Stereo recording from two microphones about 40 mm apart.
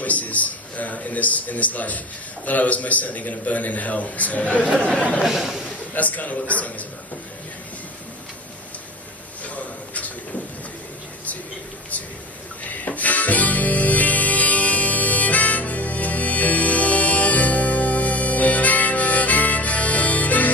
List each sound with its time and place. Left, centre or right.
0.0 s a man's voice: left
5.2 s a man's voice: centre
5.9 s a man's voice: left
9.4 s a sound: left
12.6 s music: left